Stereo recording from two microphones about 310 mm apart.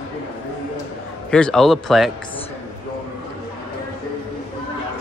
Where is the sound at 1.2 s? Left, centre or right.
Centre.